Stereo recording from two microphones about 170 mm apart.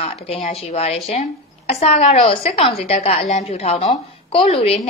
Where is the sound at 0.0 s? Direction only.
35° left (ahead or behind).